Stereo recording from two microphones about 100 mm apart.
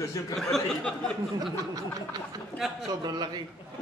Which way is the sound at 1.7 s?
40° right (ahead or behind).